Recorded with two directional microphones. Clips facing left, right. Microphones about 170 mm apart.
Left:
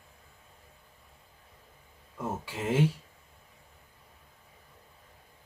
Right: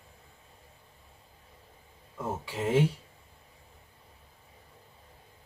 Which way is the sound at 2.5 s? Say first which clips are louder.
Right 2 dB; centre (ahead or behind).